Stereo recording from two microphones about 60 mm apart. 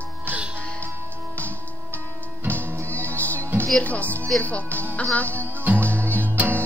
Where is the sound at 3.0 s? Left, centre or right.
Left.